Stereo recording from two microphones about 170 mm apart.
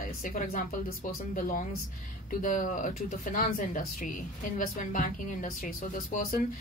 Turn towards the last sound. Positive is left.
turn(degrees=55)  # may be behind; listen again after turning